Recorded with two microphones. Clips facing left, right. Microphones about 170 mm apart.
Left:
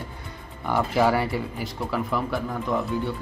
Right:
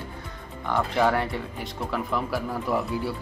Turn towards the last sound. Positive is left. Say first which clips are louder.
# left 1 dB
turn(degrees=-5)  # may be behind; listen again after turning